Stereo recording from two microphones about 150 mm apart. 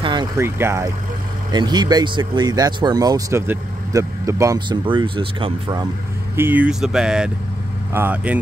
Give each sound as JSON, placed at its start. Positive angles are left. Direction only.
{"t": 0.0, "sound": "vehicle", "side_deg": -30}
{"t": 0.4, "sound": "speech", "side_deg": -15}
{"t": 1.5, "sound": "speech", "side_deg": -30}
{"t": 4.6, "sound": "speech", "side_deg": -30}
{"t": 6.3, "sound": "speech", "side_deg": -15}